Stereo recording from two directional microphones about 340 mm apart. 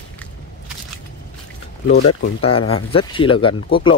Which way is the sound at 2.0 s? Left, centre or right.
Left.